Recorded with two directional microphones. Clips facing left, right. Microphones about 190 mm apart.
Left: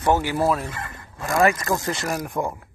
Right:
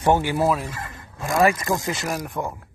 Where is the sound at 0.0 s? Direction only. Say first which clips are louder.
Right 1 dB; 20° right (ahead or behind).